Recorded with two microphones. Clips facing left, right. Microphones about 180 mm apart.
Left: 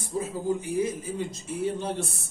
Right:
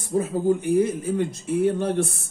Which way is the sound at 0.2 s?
60° right (ahead or behind).